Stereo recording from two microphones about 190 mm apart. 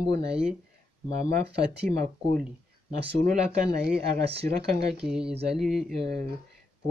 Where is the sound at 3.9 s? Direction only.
60° right (ahead or behind).